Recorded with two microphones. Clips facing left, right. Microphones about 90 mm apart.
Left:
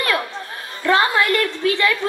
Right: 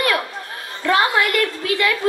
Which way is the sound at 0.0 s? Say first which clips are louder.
Right 1 dB; 30° left (ahead or behind).